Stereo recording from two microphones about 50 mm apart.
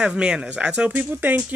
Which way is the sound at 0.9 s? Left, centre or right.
Right.